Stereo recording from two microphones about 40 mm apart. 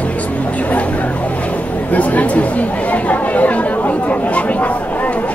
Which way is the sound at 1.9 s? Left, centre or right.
Left.